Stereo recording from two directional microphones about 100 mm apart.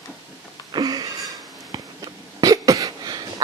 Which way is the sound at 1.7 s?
40° right (ahead or behind).